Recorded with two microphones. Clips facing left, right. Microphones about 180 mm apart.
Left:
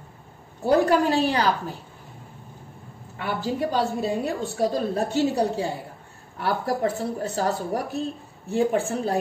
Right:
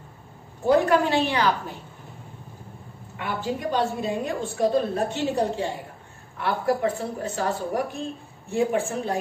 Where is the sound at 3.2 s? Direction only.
35° left (ahead or behind).